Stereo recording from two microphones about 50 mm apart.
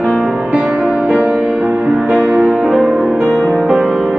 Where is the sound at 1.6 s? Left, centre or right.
Right.